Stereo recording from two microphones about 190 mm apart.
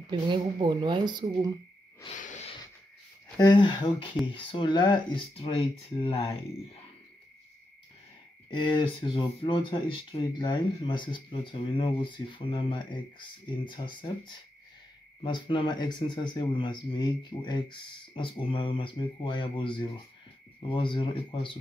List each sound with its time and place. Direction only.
0.1 s a woman's voice: 25° right (ahead or behind)
2.0 s wheeze: 40° left (ahead or behind)
3.3 s speech: 20° left (ahead or behind)
8.5 s speech: 25° left (ahead or behind)